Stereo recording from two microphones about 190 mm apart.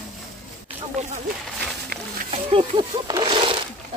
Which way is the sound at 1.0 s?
35° right (ahead or behind).